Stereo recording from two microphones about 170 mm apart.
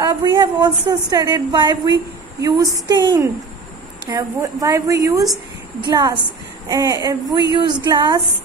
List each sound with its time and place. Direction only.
0.0 s a woman's voice: 25° right (ahead or behind)